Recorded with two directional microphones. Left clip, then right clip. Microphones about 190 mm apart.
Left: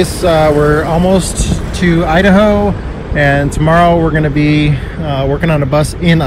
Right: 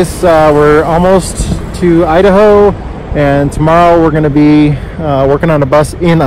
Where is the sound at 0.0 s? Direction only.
55° right (ahead or behind).